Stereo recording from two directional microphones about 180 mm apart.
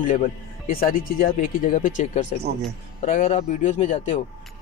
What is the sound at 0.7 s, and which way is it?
Speech, 50° left (ahead or behind).